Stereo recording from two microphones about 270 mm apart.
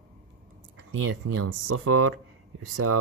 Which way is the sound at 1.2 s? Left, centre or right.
Right.